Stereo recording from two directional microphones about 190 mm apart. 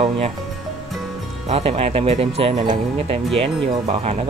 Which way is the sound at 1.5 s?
30° right (ahead or behind).